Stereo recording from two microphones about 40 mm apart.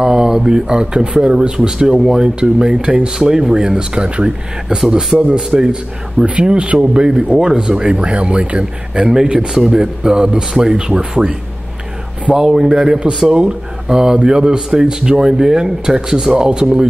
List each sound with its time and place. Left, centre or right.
0.0 s speech: centre
12.4 s speech: centre